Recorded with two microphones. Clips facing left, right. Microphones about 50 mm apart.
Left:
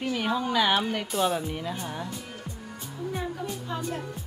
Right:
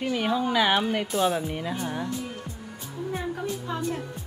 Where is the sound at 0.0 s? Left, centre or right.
Centre.